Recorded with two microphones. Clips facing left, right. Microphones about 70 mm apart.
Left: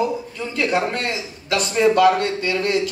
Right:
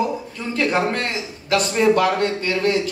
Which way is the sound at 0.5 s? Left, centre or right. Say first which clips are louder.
Right 1 dB; right.